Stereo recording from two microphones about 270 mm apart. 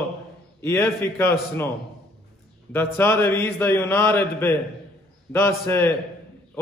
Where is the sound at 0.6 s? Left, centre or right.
Centre.